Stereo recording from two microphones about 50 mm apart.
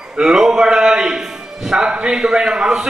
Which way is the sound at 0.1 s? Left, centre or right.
Centre.